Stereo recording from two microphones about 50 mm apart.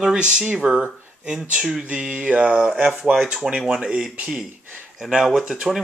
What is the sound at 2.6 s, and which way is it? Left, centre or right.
Speech, centre.